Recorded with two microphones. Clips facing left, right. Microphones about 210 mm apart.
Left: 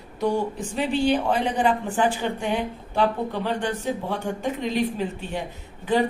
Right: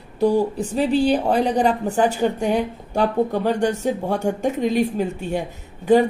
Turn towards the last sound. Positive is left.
turn(degrees=-45)  # may be behind; listen again after turning